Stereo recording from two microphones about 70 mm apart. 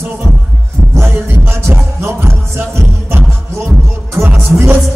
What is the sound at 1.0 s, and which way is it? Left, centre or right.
Music, right.